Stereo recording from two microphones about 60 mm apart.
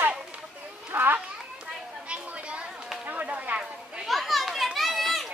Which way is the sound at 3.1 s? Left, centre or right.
Right.